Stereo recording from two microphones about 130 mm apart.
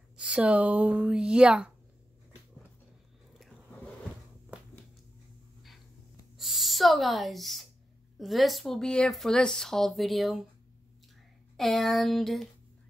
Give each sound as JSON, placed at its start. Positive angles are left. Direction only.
{"t": 0.2, "sound": "speech", "side_deg": -10}
{"t": 6.3, "sound": "a sound", "side_deg": 0}
{"t": 8.2, "sound": "speech", "side_deg": 0}
{"t": 11.5, "sound": "speech", "side_deg": 0}